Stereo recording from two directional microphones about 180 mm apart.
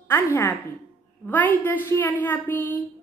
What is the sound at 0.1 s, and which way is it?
Speech, 10° left (ahead or behind).